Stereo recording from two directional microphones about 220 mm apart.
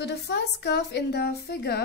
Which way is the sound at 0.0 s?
50° left (ahead or behind).